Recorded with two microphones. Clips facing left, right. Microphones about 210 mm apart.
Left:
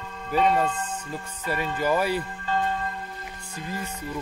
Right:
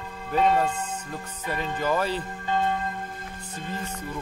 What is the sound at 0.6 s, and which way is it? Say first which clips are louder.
Speech: even; 10° right (ahead or behind).